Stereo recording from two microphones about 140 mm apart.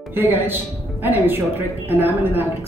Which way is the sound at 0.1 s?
15° right (ahead or behind).